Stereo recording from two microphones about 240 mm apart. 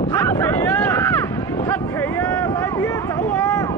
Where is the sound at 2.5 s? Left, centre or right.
Centre.